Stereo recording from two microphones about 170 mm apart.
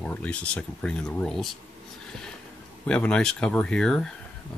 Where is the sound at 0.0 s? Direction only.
5° left (ahead or behind).